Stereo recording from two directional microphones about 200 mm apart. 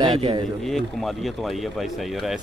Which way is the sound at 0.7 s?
Centre (ahead or behind).